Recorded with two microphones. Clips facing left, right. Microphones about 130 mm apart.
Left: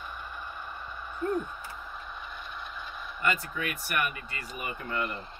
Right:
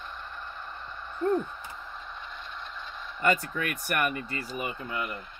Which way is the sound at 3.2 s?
45° right (ahead or behind).